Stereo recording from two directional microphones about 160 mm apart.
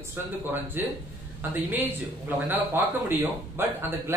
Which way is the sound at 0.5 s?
10° right (ahead or behind).